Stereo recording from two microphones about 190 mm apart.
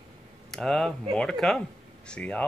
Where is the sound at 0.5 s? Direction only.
Centre (ahead or behind).